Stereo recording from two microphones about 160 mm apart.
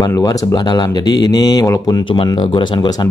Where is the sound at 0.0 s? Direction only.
20° left (ahead or behind).